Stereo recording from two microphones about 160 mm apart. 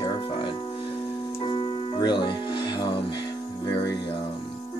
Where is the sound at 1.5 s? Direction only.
30° left (ahead or behind).